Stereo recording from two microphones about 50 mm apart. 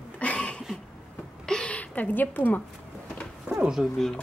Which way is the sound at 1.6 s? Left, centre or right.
Left.